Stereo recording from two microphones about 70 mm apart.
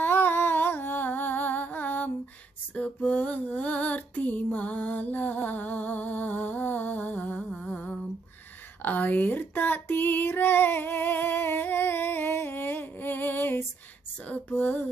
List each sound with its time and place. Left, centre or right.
0.0 s humming: left
2.7 s female singing: centre
7.6 s humming: centre
8.8 s female singing: left
14.2 s a sound: left